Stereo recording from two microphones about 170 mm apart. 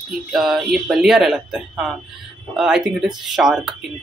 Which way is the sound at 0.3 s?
Centre (ahead or behind).